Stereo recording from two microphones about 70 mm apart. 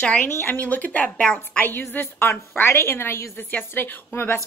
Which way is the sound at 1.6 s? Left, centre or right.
Left.